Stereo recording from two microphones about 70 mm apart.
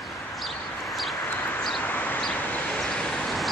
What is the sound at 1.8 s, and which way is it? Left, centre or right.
Bird, left.